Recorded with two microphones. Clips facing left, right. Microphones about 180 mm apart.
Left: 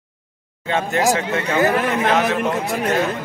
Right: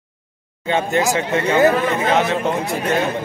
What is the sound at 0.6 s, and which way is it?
Speech, centre (ahead or behind).